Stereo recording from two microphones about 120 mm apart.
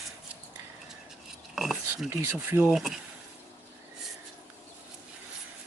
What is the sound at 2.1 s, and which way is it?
Speech, 20° right (ahead or behind).